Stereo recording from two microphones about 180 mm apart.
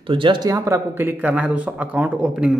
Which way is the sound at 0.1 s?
25° right (ahead or behind).